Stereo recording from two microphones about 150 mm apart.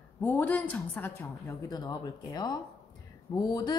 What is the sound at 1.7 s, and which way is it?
A woman's voice, 25° left (ahead or behind).